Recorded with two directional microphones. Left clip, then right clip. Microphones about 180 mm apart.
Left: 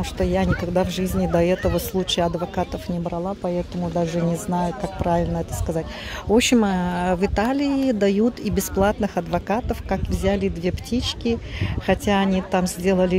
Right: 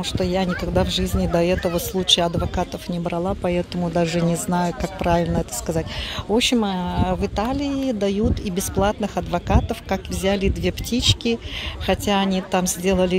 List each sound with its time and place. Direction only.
0.0 s speech: 10° left (ahead or behind)
3.0 s speech: 15° right (ahead or behind)
6.3 s speech: 20° left (ahead or behind)